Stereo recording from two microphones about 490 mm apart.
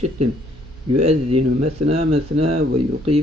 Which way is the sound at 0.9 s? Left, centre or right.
Centre.